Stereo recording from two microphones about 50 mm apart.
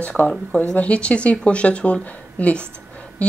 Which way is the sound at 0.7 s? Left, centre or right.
Left.